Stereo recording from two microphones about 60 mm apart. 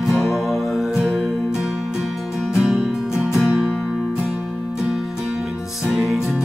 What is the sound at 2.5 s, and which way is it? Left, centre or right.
Music, centre.